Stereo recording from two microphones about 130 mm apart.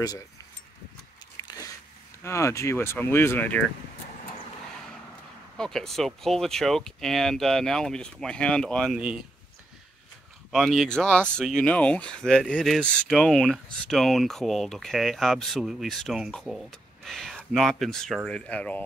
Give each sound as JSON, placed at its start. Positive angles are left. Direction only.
{"t": 2.2, "sound": "speech", "side_deg": 20}
{"t": 5.6, "sound": "speech", "side_deg": 5}
{"t": 10.5, "sound": "speech", "side_deg": 0}